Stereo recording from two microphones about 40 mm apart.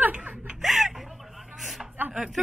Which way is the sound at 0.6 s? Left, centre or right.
Centre.